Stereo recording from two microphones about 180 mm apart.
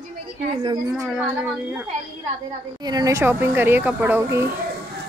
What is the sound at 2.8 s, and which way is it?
A woman's voice, 20° right (ahead or behind).